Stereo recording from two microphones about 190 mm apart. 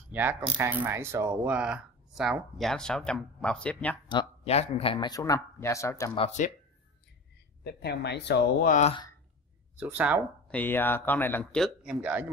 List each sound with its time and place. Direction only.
0.1 s speech: 10° right (ahead or behind); by 4.0 s 5° left (ahead or behind)
4.1 s speech: 30° left (ahead or behind)
4.9 s speech: 20° left (ahead or behind)
6.1 s speech: 35° left (ahead or behind)
7.6 s speech: 60° left (ahead or behind)
8.6 s speech: 40° left (ahead or behind)
9.8 s speech: 10° right (ahead or behind)
10.5 s speech: 10° left (ahead or behind); by 12.3 s 5° right (ahead or behind)